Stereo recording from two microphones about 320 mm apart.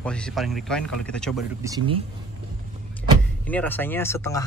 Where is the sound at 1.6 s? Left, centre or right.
Centre.